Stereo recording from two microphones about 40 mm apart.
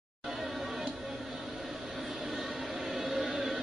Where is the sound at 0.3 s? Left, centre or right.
Centre.